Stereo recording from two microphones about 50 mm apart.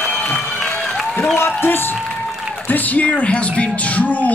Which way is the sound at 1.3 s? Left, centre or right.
Left.